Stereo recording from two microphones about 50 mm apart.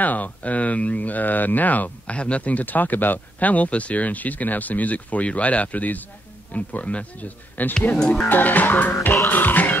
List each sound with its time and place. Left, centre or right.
0.0 s speech: left
2.1 s speech: left
8.0 s speech: centre
8.3 s speech: left
9.3 s music: left